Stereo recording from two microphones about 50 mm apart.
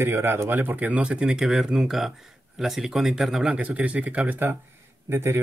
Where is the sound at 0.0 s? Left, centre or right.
Right.